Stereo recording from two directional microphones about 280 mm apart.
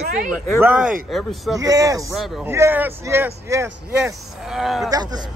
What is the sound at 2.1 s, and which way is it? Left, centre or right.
A man's voice, centre.